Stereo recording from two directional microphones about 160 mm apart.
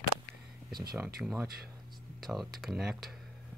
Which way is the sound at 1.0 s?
10° right (ahead or behind).